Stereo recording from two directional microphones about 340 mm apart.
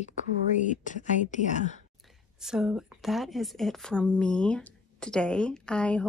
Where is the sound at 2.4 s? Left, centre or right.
Centre.